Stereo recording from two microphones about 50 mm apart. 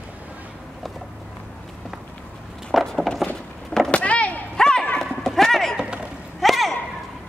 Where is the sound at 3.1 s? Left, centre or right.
Centre.